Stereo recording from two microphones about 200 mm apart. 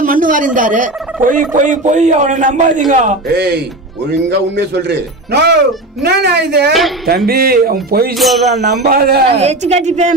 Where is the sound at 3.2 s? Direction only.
55° right (ahead or behind).